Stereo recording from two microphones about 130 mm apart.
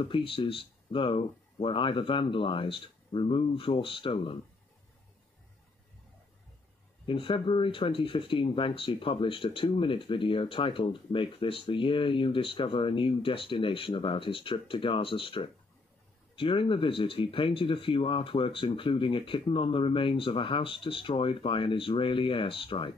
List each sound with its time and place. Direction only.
0.0 s speech: 45° left (ahead or behind)
7.1 s speech: 40° left (ahead or behind)